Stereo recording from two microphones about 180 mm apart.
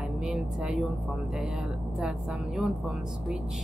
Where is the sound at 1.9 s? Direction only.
5° right (ahead or behind).